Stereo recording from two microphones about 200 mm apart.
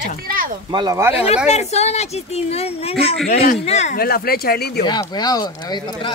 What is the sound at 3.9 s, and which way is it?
Speech, 50° left (ahead or behind).